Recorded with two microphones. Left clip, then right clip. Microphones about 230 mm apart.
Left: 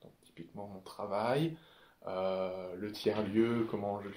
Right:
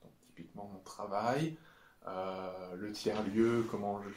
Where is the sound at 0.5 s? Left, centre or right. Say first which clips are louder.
Left 2 dB; left.